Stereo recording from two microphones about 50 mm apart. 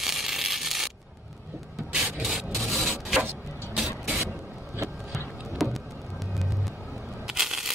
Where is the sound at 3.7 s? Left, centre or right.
Centre.